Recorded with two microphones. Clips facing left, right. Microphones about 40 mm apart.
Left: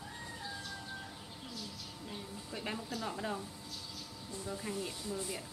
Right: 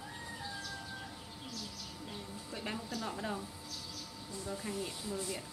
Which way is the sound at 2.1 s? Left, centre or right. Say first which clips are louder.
Left 1 dB; centre.